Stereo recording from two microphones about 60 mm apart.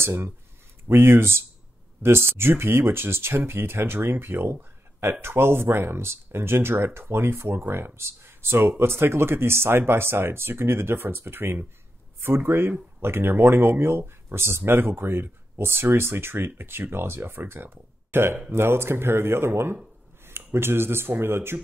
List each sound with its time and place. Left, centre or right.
0.0 s speech: right